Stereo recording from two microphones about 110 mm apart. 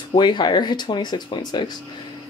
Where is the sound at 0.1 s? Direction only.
45° left (ahead or behind).